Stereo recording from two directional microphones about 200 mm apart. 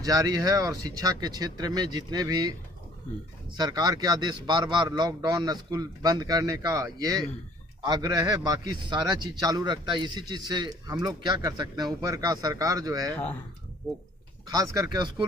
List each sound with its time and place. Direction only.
0.0 s a man's voice: 20° right (ahead or behind)
3.5 s a man's voice: 20° right (ahead or behind)
13.1 s speech: 10° left (ahead or behind)
14.5 s speech: 15° right (ahead or behind)